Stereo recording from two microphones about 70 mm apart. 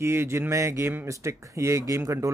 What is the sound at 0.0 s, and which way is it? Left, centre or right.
Speech, right.